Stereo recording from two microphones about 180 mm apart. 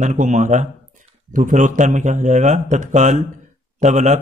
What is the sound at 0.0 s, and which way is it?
A man's voice, 40° right (ahead or behind).